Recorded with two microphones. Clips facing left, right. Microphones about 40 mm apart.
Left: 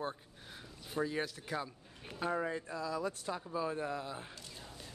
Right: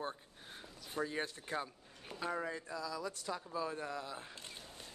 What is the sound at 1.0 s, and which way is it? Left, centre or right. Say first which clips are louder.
Speech: left 3 dB; centre.